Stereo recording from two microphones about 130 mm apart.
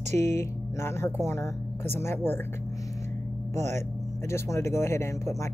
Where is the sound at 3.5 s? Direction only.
20° left (ahead or behind).